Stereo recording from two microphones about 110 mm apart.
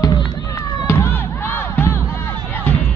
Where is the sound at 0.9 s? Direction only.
25° left (ahead or behind).